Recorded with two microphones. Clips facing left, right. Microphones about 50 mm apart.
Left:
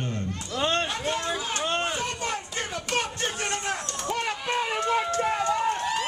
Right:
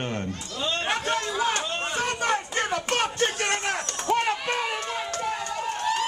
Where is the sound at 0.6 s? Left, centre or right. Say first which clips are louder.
Left 4 dB; left.